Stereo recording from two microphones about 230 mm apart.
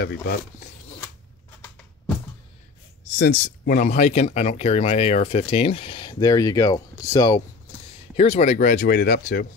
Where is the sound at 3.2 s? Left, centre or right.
Left.